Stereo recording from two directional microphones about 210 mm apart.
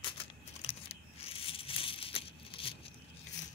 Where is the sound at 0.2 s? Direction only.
25° left (ahead or behind).